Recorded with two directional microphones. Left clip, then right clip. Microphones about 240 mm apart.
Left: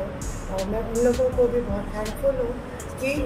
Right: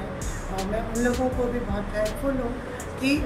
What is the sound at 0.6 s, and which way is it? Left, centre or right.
Speech, centre.